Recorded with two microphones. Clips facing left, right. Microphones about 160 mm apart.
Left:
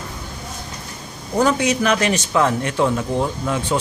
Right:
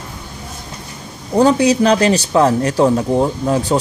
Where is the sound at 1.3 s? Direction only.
35° right (ahead or behind).